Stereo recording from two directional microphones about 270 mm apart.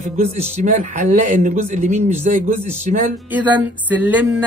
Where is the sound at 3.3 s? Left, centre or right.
Centre.